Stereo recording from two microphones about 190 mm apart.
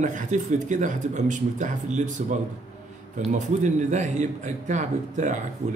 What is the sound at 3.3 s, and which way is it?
A man's voice, 40° right (ahead or behind).